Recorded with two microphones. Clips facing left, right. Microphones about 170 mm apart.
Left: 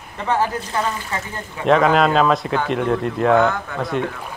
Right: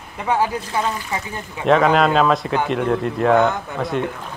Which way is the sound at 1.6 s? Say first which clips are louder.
Even; centre (ahead or behind).